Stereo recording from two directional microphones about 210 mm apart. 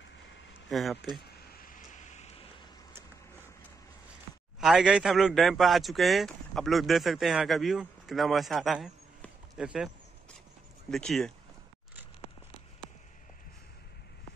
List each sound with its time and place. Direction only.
0.7 s speech: centre (ahead or behind)
2.1 s a sound: 30° left (ahead or behind)
4.6 s speech: centre (ahead or behind)
10.9 s speech: centre (ahead or behind)